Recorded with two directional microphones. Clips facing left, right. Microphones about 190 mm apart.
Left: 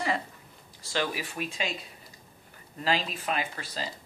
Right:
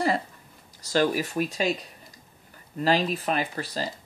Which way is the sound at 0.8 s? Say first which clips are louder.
Right 8 dB; 40° right (ahead or behind).